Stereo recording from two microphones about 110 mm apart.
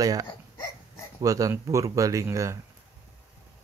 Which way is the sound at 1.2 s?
30° right (ahead or behind).